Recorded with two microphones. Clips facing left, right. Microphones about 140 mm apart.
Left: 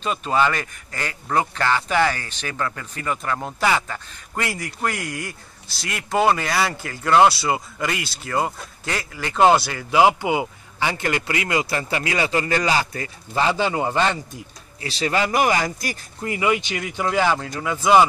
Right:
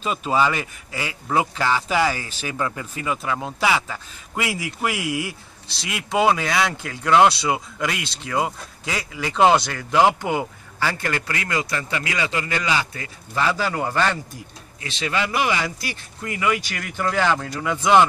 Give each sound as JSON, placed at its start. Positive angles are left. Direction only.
{"t": 0.0, "sound": "speech", "side_deg": -5}
{"t": 14.8, "sound": "speech", "side_deg": 35}
{"t": 16.2, "sound": "speech", "side_deg": 25}